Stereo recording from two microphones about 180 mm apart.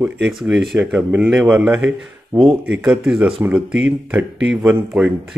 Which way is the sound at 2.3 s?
30° right (ahead or behind).